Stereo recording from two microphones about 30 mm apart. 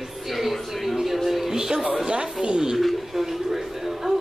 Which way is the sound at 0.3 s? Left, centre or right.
Centre.